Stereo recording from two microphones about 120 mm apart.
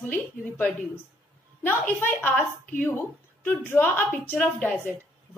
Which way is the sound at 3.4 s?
15° left (ahead or behind).